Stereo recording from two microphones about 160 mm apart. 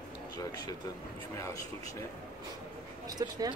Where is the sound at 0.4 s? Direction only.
25° left (ahead or behind).